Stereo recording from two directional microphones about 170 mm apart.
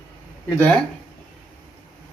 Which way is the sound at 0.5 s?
10° left (ahead or behind).